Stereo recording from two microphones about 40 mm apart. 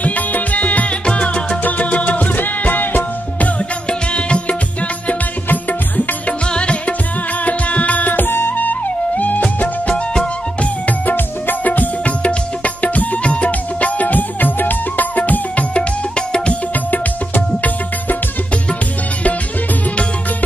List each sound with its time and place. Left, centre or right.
0.0 s music: left
5.5 s music: left
6.5 s music: left
8.1 s music: left
9.1 s music: left
11.1 s music: left
12.2 s music: left